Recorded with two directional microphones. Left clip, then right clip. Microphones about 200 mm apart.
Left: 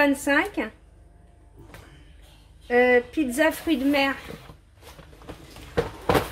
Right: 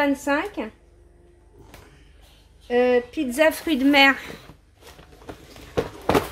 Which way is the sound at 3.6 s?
30° right (ahead or behind).